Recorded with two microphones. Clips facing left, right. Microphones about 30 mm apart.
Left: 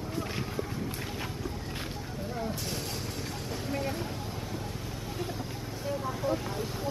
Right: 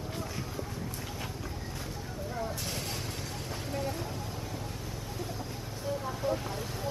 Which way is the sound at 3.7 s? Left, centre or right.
Left.